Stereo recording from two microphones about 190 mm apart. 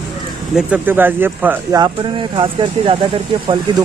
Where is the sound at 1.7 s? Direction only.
25° right (ahead or behind).